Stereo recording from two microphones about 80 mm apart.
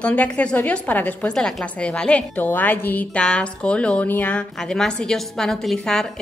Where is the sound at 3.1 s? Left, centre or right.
Centre.